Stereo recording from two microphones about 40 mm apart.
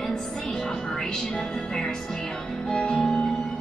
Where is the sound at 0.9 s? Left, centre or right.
Centre.